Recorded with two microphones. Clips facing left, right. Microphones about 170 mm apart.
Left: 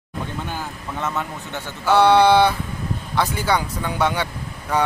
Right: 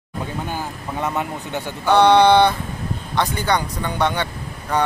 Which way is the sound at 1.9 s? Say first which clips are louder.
Right 1 dB; 5° left (ahead or behind).